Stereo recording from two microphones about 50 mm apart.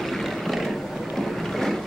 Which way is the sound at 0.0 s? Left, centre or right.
Centre.